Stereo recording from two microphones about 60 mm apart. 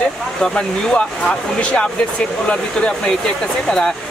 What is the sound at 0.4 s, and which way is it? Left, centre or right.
Speech, centre.